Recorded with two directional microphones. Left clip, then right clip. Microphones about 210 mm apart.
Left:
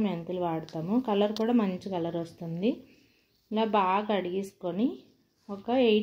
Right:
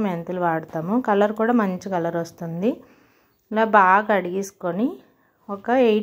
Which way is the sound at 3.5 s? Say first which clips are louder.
Right 11 dB; 45° right (ahead or behind).